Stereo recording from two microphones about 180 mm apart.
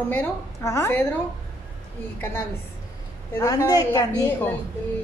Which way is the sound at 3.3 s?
20° left (ahead or behind).